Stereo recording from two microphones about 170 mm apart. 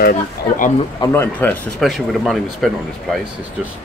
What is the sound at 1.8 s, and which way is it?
Speech, centre (ahead or behind).